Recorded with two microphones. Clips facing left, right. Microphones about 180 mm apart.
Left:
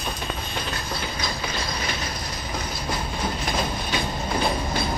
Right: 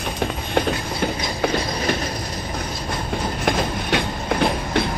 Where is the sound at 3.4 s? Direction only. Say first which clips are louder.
Right 5 dB; 70° right (ahead or behind).